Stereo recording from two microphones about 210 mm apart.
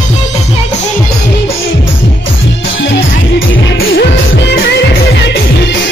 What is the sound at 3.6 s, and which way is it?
Music, 50° left (ahead or behind).